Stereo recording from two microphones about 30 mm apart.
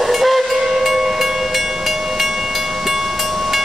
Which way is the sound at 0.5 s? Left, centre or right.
Centre.